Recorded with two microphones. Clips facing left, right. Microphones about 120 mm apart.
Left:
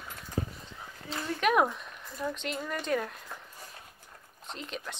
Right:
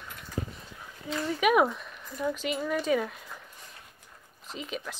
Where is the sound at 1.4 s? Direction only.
Centre (ahead or behind).